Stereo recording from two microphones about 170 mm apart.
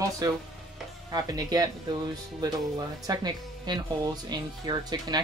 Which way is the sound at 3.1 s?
25° right (ahead or behind).